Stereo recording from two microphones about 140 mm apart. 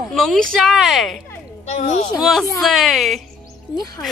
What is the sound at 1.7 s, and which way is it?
Speech, 55° left (ahead or behind).